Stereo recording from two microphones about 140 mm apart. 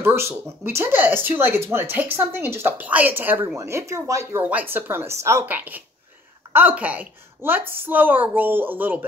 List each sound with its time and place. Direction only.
0.0 s speech: 20° right (ahead or behind)